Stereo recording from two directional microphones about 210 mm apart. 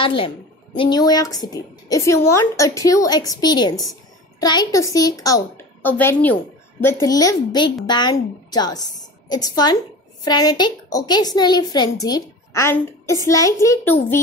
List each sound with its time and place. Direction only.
0.0 s a woman's voice: 25° left (ahead or behind)